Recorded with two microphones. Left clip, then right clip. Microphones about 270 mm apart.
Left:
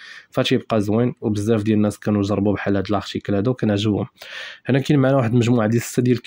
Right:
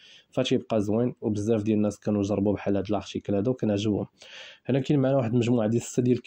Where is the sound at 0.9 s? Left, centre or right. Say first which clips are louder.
Left 6 dB; left.